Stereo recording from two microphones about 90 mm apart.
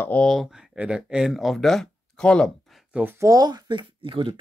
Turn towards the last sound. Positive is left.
turn(degrees=-75)  # may be behind; listen again after turning